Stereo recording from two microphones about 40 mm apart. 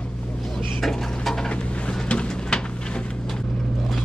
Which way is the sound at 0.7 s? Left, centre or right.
Centre.